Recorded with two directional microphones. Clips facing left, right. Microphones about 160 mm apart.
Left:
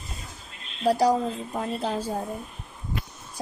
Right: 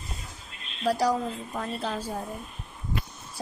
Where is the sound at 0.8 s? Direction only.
25° left (ahead or behind).